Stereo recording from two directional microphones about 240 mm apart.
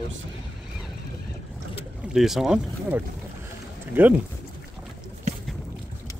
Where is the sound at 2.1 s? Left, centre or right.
Centre.